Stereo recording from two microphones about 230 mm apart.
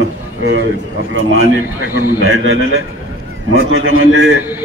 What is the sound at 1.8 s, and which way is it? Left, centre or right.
Speech, left.